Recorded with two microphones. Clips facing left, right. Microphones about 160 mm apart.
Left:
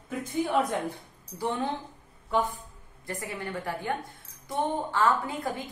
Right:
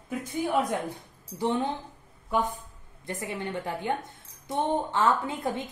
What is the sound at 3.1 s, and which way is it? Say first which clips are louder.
A woman's voice: right 2 dB; 20° right (ahead or behind).